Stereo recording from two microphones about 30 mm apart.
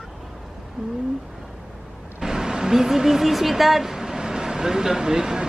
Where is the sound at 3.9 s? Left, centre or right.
Centre.